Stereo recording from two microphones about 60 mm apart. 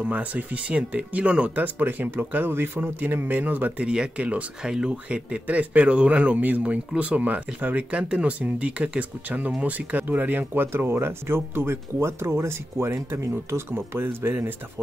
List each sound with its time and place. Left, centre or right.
0.0 s speech: right
3.8 s speech: centre; by 14.5 s right